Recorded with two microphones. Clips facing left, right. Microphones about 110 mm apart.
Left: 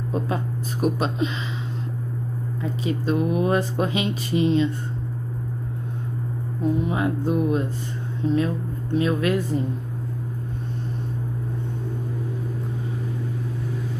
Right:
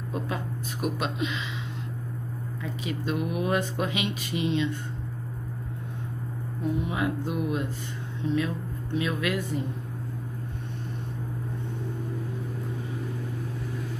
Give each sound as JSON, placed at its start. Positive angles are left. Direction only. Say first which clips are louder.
{"t": 0.1, "sound": "speech", "louder": "left 5 dB", "side_deg": 35}
{"t": 2.6, "sound": "speech", "louder": "left 6 dB", "side_deg": 35}
{"t": 6.6, "sound": "speech", "louder": "left 5 dB", "side_deg": 35}